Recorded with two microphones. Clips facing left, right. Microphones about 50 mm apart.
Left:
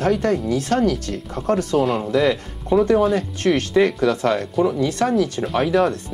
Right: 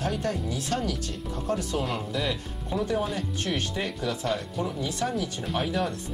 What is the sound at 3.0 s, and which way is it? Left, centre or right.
Speech, left.